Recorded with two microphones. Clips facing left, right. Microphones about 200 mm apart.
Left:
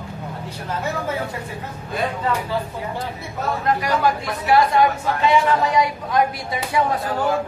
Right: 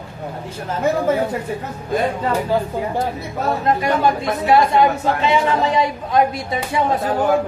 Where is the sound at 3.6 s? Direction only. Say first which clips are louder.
Right 2 dB; 25° right (ahead or behind).